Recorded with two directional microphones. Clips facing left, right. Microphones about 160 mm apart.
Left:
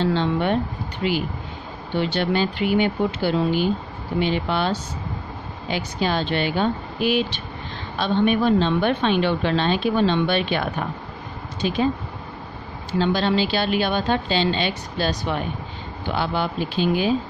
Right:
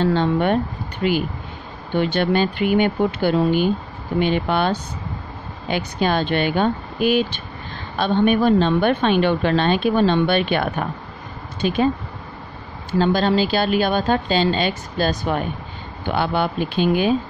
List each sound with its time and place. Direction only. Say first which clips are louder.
0.0 s a woman's voice: right 3 dB; 50° right (ahead or behind)
13.0 s a woman's voice: right 3 dB; 45° right (ahead or behind)